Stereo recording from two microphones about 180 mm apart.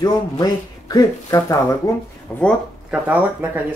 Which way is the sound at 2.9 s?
10° right (ahead or behind).